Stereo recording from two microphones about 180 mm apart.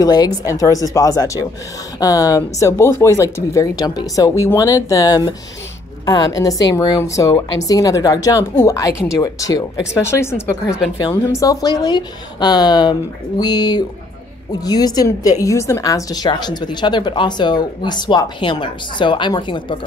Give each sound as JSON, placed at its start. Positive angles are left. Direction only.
{"t": 0.0, "sound": "a woman's voice", "side_deg": 20}